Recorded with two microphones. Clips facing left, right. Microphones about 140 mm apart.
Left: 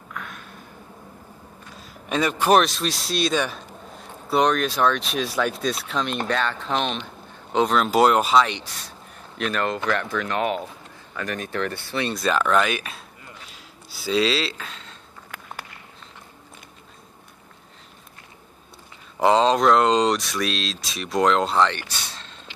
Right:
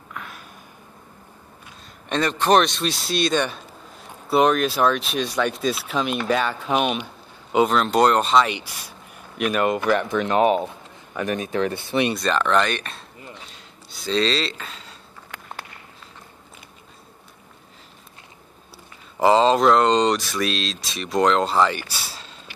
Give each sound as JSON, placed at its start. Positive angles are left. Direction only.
{"t": 0.1, "sound": "a sound", "side_deg": -5}
{"t": 2.0, "sound": "speech", "side_deg": 5}
{"t": 8.5, "sound": "speech", "side_deg": -10}
{"t": 12.1, "sound": "speech", "side_deg": 5}
{"t": 13.5, "sound": "a sound", "side_deg": 5}
{"t": 19.1, "sound": "speech", "side_deg": 0}